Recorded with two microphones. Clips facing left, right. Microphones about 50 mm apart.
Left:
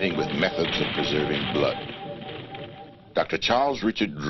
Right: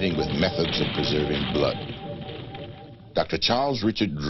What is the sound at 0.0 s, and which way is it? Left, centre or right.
Speech, centre.